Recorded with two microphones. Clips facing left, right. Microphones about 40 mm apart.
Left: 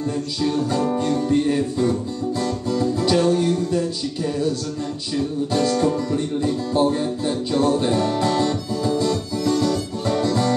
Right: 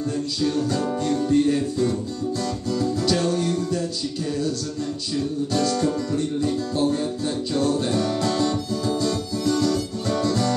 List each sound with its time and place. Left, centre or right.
0.4 s music: centre
5.1 s speech: centre